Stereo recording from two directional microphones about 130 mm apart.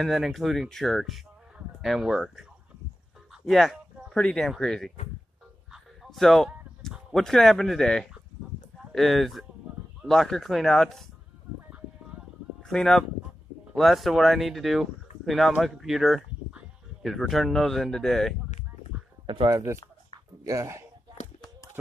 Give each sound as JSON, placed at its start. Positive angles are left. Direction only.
{"t": 0.0, "sound": "speech", "side_deg": 0}
{"t": 3.4, "sound": "speech", "side_deg": 0}
{"t": 5.7, "sound": "bow-wow", "side_deg": 0}
{"t": 8.9, "sound": "speech", "side_deg": 0}
{"t": 12.6, "sound": "speech", "side_deg": 5}
{"t": 19.2, "sound": "speech", "side_deg": -40}
{"t": 19.5, "sound": "speech", "side_deg": -20}